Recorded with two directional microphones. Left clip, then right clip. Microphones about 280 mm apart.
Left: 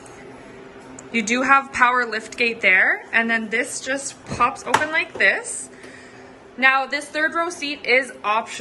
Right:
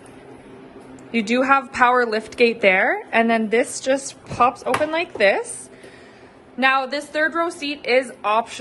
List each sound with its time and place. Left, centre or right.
1.1 s a woman's voice: centre
6.6 s a woman's voice: centre